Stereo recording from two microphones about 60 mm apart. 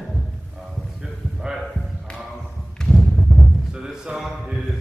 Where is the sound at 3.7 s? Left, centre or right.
Centre.